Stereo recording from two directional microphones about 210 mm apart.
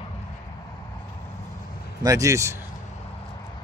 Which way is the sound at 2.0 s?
15° right (ahead or behind).